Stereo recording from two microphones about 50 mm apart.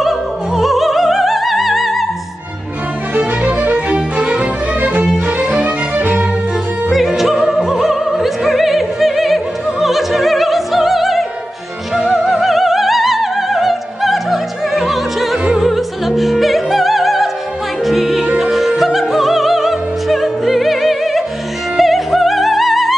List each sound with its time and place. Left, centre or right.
0.6 s music: centre
3.6 s music: right
6.9 s opera: centre
11.9 s music: centre